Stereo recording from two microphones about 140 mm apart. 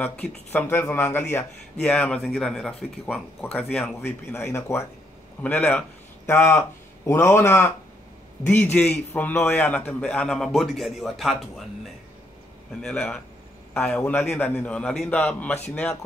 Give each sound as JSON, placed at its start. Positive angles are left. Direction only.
{"t": 0.0, "sound": "a man's voice", "side_deg": 10}